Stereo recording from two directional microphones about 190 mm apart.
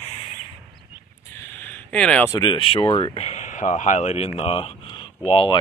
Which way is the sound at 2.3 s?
25° left (ahead or behind).